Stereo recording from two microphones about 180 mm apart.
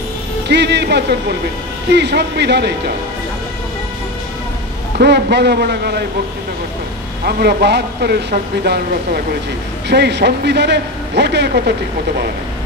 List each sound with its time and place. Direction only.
0.5 s a man's voice: 70° right (ahead or behind)
4.9 s speech: 65° right (ahead or behind)
7.2 s a man's voice: 60° right (ahead or behind)